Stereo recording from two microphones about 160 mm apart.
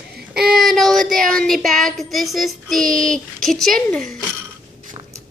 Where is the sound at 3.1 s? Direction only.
Centre (ahead or behind).